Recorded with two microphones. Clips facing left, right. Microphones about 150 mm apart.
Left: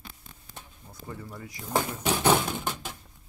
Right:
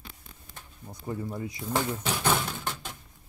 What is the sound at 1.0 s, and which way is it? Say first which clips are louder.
Speech: right 7 dB; 25° right (ahead or behind).